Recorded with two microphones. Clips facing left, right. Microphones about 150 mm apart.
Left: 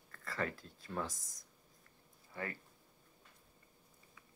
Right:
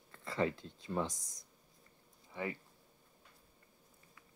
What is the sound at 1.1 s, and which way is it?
Speech, centre (ahead or behind).